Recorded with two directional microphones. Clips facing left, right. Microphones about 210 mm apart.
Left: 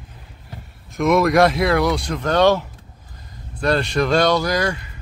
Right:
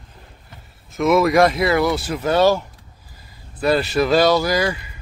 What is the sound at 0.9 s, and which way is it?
Speech, centre (ahead or behind).